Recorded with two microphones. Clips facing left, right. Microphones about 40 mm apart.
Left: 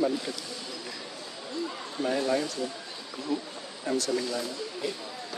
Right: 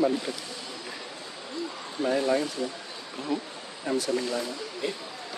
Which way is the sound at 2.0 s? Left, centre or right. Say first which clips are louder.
Right 2 dB; centre.